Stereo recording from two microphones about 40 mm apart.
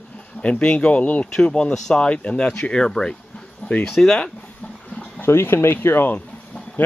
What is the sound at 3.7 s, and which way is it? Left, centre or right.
Speech, left.